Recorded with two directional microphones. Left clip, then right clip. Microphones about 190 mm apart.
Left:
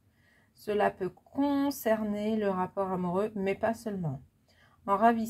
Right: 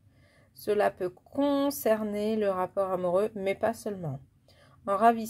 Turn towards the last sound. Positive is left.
turn(degrees=-30)  # may be behind; listen again after turning